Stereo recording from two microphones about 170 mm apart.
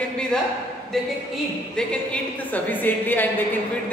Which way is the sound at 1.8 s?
5° left (ahead or behind).